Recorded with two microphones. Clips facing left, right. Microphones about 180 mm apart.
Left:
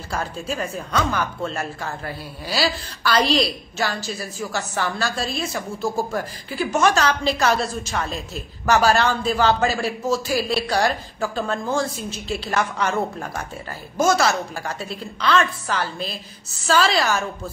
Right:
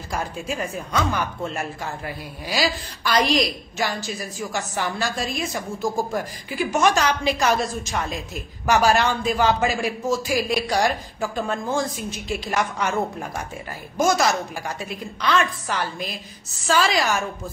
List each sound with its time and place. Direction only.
0.1 s a woman's voice: 15° right (ahead or behind)